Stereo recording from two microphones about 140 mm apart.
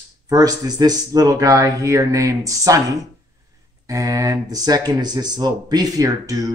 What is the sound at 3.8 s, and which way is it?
Speech, 25° right (ahead or behind).